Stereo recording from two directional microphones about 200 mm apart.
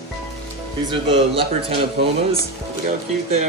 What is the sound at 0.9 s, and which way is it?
Speech, 25° right (ahead or behind).